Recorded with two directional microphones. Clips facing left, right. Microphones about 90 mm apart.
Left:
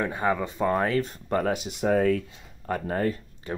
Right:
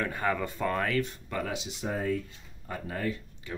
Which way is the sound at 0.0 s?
20° left (ahead or behind).